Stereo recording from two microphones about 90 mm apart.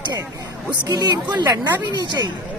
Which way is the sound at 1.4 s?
55° right (ahead or behind).